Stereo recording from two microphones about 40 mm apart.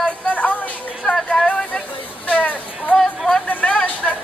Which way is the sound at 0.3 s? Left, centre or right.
Left.